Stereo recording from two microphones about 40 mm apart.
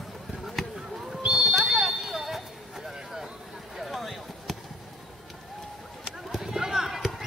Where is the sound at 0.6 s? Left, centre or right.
Centre.